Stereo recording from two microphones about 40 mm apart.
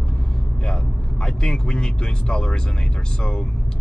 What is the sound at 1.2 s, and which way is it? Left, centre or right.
Speech, centre.